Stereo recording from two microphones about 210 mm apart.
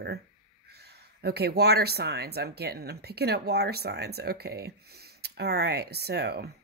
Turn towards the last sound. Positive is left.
turn(degrees=-50)  # may be behind; listen again after turning